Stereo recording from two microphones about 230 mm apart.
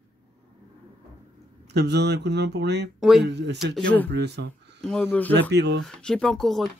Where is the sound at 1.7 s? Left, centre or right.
Right.